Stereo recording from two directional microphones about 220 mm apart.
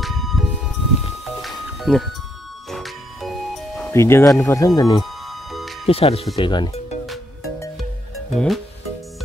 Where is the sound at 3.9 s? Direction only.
10° left (ahead or behind).